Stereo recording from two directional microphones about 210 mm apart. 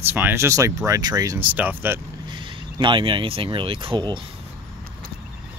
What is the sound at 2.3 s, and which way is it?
Speech, 20° right (ahead or behind).